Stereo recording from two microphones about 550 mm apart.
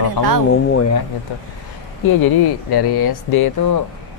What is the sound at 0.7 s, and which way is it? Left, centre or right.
Speech, left.